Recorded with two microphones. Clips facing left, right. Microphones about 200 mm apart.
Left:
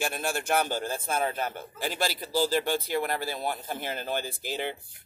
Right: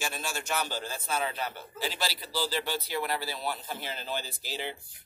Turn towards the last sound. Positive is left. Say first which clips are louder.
# left 5 dB
turn(degrees=55)  # may be behind; listen again after turning